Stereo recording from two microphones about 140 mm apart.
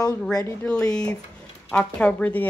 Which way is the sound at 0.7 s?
5° left (ahead or behind).